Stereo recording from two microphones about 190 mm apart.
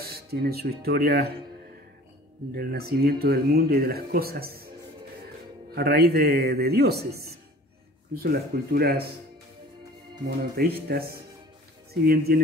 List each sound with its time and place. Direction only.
0.0 s speech: 55° right (ahead or behind)
2.5 s speech: 55° right (ahead or behind)
5.8 s a man's voice: 55° right (ahead or behind)
8.1 s speech: 55° right (ahead or behind)
10.9 s speech: 55° right (ahead or behind)